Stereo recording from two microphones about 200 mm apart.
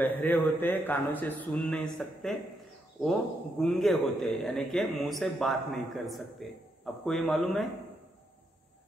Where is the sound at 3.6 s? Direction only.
Centre (ahead or behind).